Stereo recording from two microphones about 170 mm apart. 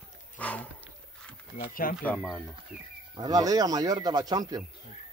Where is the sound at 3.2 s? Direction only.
20° right (ahead or behind).